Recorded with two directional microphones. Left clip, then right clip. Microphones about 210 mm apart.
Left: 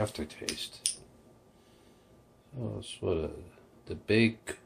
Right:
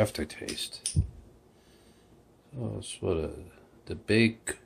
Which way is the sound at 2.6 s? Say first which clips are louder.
Right 1 dB; 20° right (ahead or behind).